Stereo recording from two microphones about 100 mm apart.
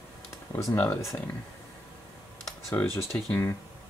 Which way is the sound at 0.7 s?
25° left (ahead or behind).